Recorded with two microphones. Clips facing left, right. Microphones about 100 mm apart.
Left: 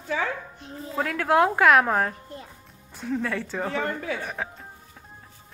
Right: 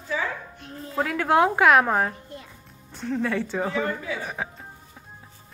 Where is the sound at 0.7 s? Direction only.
Centre (ahead or behind).